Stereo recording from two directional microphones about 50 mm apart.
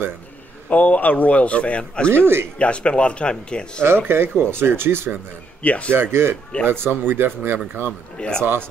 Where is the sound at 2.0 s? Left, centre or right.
Right.